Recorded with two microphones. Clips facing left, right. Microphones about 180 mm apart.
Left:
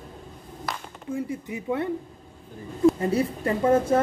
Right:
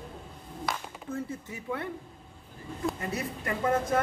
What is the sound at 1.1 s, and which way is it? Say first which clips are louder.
Speech: left 6 dB; 20° left (ahead or behind).